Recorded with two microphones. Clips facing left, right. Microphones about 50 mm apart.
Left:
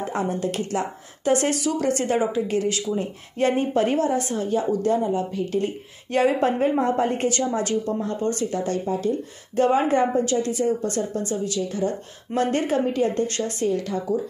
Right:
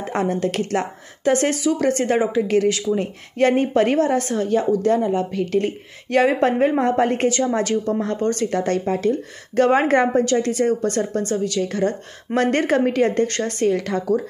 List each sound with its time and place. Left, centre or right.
0.0 s a woman's voice: right
2.4 s a woman's voice: right
5.4 s a woman's voice: right
6.2 s a woman's voice: right
6.8 s a woman's voice: right
8.5 s speech: right
9.6 s a woman's voice: right
13.3 s speech: right